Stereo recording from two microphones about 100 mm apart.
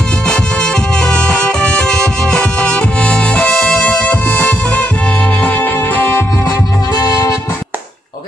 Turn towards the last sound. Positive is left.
turn(degrees=40)  # may be behind; listen again after turning